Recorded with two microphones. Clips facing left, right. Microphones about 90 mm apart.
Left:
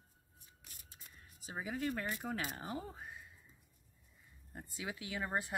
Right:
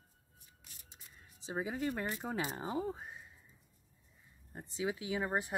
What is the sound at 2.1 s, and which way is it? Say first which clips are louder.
Speech: right 3 dB; 20° right (ahead or behind).